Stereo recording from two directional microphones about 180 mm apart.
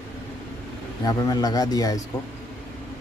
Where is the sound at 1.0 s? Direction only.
20° left (ahead or behind).